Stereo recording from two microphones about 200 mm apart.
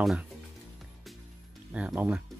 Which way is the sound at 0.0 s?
Centre (ahead or behind).